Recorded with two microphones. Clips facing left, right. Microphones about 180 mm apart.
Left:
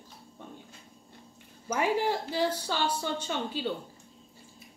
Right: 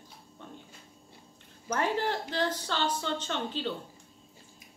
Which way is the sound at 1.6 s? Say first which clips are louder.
Left 2 dB; 10° left (ahead or behind).